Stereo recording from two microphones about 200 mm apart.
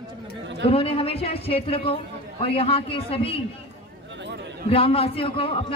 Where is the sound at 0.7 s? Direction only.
30° left (ahead or behind).